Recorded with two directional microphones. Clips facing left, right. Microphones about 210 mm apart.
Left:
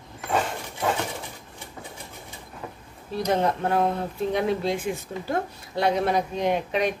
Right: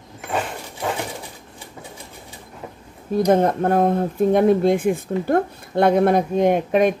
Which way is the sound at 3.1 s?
50° right (ahead or behind).